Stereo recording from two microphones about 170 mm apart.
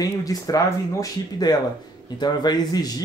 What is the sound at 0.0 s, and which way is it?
Speech, 20° left (ahead or behind).